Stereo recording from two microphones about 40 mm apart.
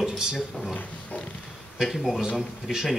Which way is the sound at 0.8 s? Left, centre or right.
Left.